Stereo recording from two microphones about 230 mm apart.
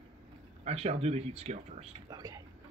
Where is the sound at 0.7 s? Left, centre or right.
Right.